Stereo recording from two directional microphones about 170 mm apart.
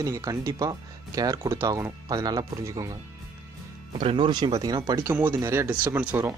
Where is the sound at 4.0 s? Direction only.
30° right (ahead or behind).